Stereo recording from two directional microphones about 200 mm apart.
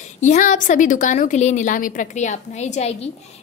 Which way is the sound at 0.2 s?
40° left (ahead or behind).